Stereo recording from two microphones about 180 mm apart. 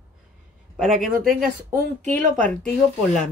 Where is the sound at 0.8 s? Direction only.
Centre (ahead or behind).